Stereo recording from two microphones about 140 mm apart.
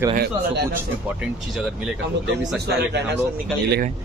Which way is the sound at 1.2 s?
5° right (ahead or behind).